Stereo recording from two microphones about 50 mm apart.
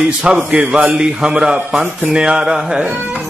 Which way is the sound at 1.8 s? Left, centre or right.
Right.